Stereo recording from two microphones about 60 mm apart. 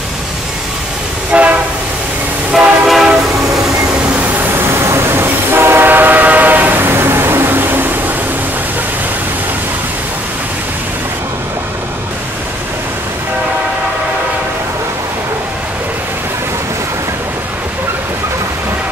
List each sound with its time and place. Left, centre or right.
1.3 s train: right
2.5 s train: centre
4.6 s train: right